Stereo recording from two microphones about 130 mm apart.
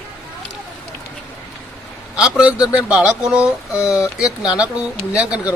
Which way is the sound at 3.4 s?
25° left (ahead or behind).